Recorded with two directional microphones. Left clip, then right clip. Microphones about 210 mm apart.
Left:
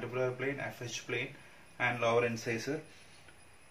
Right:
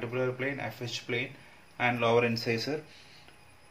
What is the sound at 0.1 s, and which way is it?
Speech, 45° right (ahead or behind).